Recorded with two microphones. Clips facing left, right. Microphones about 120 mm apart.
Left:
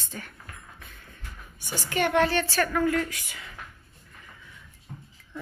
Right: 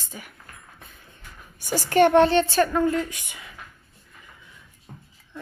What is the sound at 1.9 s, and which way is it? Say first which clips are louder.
Speech: right 7 dB; 30° right (ahead or behind).